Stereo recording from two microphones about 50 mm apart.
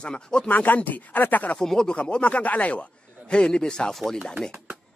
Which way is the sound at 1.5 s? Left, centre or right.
Centre.